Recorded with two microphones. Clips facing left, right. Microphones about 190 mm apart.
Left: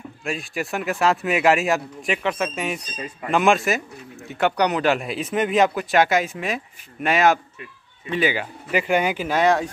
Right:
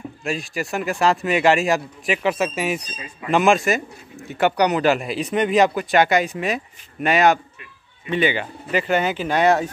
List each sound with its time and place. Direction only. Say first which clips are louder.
0.2 s speech: right 1 dB; centre (ahead or behind)
9.4 s speech: right 2 dB; 5° right (ahead or behind)